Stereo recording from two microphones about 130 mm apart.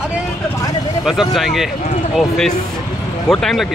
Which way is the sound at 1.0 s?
Centre (ahead or behind).